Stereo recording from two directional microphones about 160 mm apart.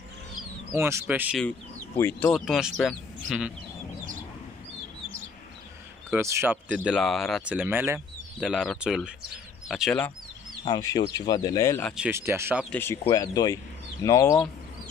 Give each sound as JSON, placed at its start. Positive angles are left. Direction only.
{"t": 0.7, "sound": "speech", "side_deg": -15}
{"t": 2.0, "sound": "speech", "side_deg": 10}
{"t": 6.0, "sound": "speech", "side_deg": -15}
{"t": 10.6, "sound": "speech", "side_deg": 25}
{"t": 12.0, "sound": "speech", "side_deg": -15}
{"t": 12.6, "sound": "speech", "side_deg": 15}
{"t": 13.1, "sound": "speech", "side_deg": 25}